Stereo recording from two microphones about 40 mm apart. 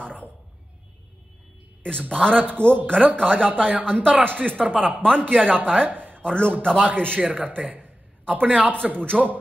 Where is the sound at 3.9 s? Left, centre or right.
Centre.